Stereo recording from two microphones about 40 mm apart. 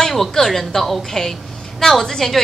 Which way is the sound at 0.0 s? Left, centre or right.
Centre.